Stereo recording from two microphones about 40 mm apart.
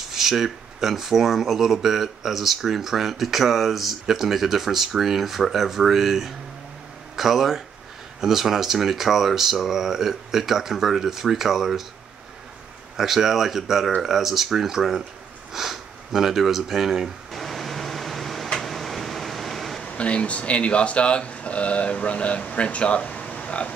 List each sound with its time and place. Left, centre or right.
0.1 s speech: centre
12.9 s speech: centre
15.5 s sniff: centre
18.5 s a sound: centre
20.0 s speech: left